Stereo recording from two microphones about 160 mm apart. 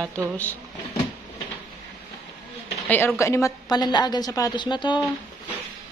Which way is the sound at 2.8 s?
10° left (ahead or behind).